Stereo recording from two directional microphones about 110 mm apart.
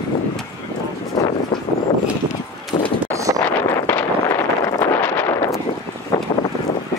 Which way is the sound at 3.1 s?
30° right (ahead or behind).